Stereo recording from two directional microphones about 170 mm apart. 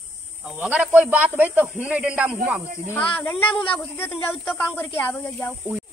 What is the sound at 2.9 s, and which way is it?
Speech, 10° left (ahead or behind).